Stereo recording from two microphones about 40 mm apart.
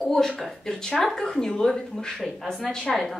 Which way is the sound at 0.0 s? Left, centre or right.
Centre.